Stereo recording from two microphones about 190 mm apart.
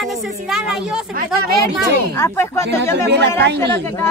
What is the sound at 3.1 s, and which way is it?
Speech, 65° right (ahead or behind).